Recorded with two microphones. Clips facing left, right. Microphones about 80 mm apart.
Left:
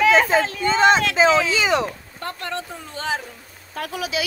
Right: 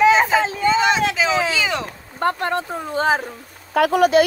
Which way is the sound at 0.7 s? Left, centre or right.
Left.